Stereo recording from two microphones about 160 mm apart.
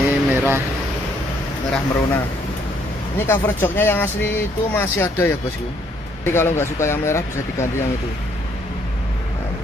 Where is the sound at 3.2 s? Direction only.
15° left (ahead or behind).